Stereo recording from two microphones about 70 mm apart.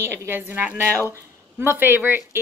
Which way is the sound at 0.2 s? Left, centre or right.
Right.